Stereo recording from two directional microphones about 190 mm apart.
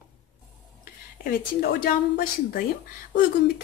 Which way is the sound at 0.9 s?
50° left (ahead or behind).